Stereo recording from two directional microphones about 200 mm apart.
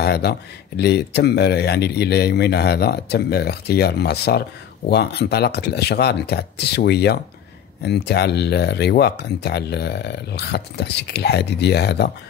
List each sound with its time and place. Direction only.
0.0 s speech: 55° left (ahead or behind)